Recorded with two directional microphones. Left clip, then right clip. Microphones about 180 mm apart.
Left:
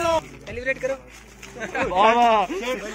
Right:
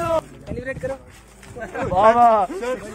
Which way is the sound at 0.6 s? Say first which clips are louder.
Left 3 dB; 60° right (ahead or behind).